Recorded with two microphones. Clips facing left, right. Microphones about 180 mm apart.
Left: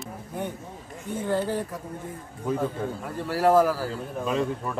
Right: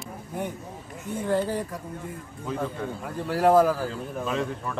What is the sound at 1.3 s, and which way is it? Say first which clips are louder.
Speech: right 1 dB; 10° right (ahead or behind).